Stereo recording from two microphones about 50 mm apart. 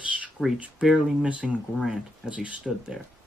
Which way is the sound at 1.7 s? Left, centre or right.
Centre.